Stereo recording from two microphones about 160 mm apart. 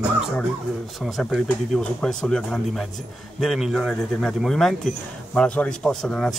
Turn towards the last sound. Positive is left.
turn(degrees=0)  # may be behind; listen again after turning